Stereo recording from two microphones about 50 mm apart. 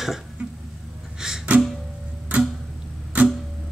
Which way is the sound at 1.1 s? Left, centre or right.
Centre.